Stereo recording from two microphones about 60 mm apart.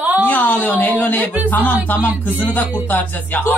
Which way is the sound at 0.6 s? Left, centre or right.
Left.